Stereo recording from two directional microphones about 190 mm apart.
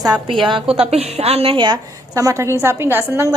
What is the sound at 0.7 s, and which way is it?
A woman's voice, 30° right (ahead or behind).